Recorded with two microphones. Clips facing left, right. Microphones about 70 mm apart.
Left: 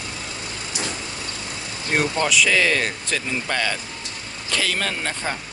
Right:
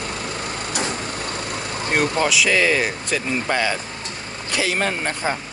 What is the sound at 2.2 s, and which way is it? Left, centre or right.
Speech, centre.